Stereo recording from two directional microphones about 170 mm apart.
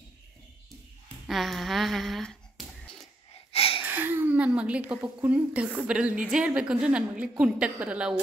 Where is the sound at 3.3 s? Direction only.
35° left (ahead or behind).